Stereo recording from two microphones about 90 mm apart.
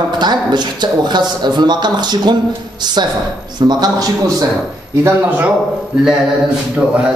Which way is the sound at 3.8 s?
45° right (ahead or behind).